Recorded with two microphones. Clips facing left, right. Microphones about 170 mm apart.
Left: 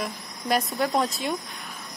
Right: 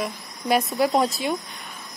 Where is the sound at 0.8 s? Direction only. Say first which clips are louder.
Right 4 dB; 15° right (ahead or behind).